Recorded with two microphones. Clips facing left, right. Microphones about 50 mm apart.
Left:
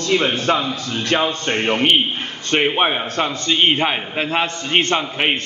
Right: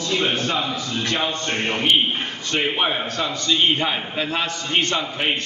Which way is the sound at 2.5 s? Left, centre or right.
Left.